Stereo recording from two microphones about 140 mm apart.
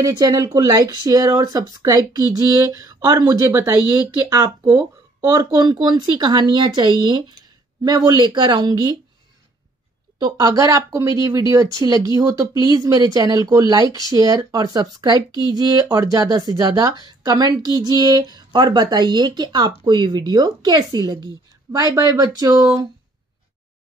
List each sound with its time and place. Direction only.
0.0 s speech: 25° right (ahead or behind)
10.1 s a woman's voice: 30° right (ahead or behind)